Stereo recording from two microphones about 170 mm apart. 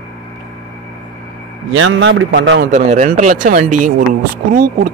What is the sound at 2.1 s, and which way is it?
Speech, 75° right (ahead or behind).